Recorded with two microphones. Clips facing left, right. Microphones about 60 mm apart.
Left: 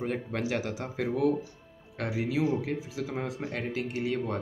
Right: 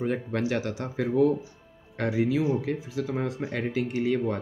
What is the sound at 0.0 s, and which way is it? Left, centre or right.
Speech, centre.